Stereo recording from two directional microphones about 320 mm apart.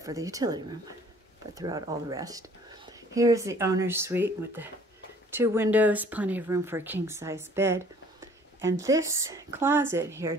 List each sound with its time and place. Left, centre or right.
0.0 s speech: centre